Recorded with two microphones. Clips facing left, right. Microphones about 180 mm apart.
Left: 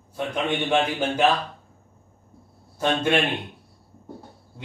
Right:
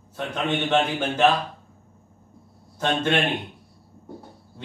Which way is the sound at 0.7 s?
10° left (ahead or behind).